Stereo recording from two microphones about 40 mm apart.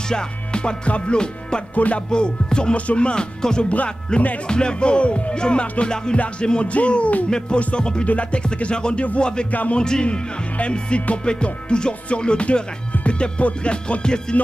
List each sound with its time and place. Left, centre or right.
0.1 s music: left
1.8 s music: left
2.0 s music: left
3.6 s music: left
4.5 s music: left
6.7 s music: left
7.2 s music: centre
9.5 s music: left
9.8 s music: left